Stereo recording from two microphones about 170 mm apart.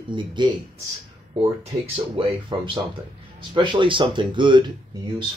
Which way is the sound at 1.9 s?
35° right (ahead or behind).